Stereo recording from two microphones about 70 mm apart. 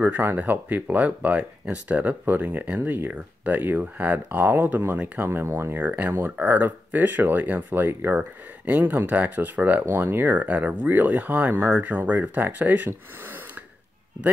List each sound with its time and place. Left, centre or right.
0.0 s speech: right
5.9 s speech: right